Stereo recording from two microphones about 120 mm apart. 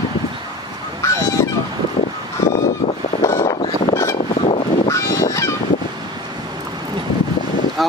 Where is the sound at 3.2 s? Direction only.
25° left (ahead or behind).